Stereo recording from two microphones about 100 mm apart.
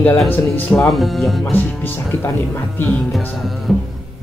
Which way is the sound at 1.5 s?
20° left (ahead or behind).